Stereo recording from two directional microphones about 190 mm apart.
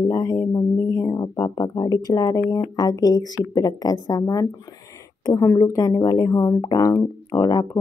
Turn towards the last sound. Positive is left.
turn(degrees=20)  # may be behind; listen again after turning